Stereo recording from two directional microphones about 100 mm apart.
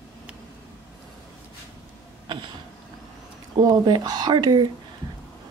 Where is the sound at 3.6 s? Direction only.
45° right (ahead or behind).